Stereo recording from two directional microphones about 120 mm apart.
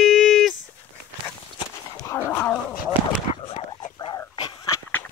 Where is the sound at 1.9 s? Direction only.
30° left (ahead or behind).